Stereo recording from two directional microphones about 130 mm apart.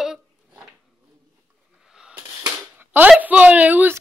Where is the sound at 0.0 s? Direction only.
5° right (ahead or behind).